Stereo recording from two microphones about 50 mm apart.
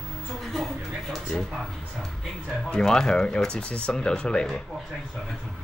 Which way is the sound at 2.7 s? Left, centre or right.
Centre.